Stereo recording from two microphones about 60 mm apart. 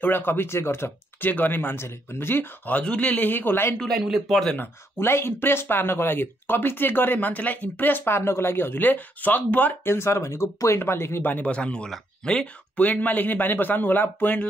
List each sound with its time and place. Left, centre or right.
0.0 s speech: left
1.3 s speech: left
2.8 s speech: left
3.8 s speech: centre
4.6 s speech: left
9.8 s speech: left
11.4 s speech: centre
12.7 s speech: left